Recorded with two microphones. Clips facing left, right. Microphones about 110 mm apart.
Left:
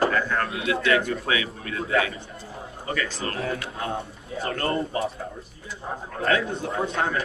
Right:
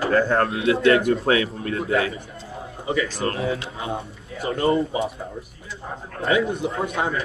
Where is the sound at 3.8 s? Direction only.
Centre (ahead or behind).